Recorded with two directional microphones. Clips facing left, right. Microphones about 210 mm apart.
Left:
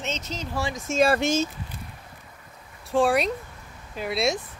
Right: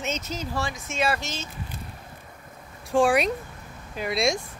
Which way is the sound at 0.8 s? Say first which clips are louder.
Left 9 dB; 40° left (ahead or behind).